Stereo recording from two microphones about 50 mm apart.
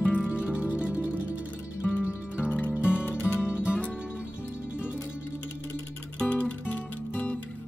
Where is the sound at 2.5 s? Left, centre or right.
Left.